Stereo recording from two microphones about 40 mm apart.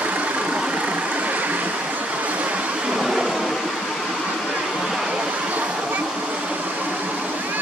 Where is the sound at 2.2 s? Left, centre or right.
Right.